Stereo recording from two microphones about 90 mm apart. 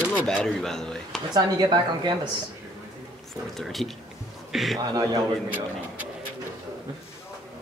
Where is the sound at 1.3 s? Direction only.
50° right (ahead or behind).